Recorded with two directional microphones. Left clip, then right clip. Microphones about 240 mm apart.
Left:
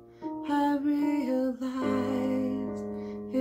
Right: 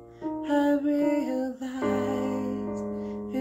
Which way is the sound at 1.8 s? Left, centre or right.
Right.